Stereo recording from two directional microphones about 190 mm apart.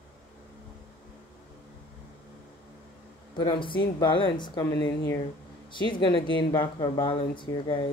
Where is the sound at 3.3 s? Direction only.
25° left (ahead or behind).